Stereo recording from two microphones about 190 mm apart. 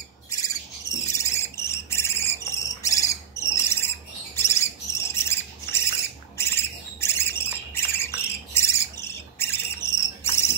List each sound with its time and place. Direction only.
0.3 s insect: 20° left (ahead or behind)
4.4 s cricket: 15° left (ahead or behind)
6.3 s bird: 15° left (ahead or behind)
8.5 s cricket: 15° left (ahead or behind)